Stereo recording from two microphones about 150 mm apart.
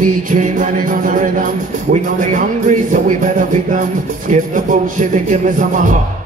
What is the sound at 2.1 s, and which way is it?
Speech, 60° right (ahead or behind).